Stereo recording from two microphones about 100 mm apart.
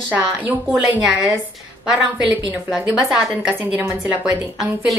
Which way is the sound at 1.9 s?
10° right (ahead or behind).